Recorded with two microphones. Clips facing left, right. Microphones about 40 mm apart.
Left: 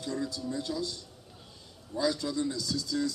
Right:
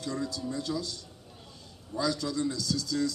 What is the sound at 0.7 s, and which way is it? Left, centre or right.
Speech, centre.